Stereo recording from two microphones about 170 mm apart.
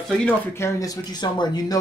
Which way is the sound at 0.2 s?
15° left (ahead or behind).